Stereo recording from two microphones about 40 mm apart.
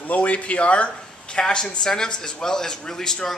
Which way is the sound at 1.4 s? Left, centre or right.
Centre.